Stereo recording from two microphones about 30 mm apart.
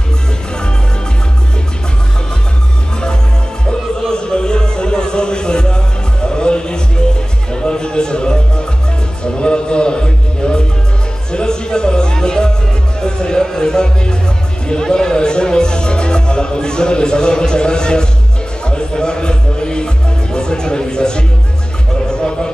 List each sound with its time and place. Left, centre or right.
4.1 s music: left
7.5 s a sound: left
9.2 s music: left